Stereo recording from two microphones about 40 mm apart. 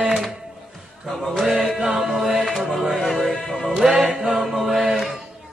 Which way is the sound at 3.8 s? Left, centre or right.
Centre.